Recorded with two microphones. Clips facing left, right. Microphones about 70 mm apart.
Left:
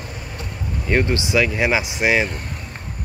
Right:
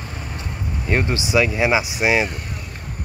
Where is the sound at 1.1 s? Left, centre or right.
Centre.